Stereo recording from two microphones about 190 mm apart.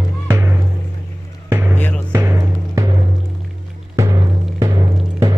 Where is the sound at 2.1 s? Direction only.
15° right (ahead or behind).